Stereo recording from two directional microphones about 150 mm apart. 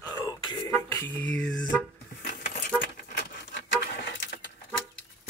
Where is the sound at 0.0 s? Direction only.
25° left (ahead or behind).